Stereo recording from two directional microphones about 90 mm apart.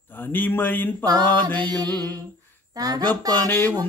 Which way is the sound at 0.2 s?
20° left (ahead or behind).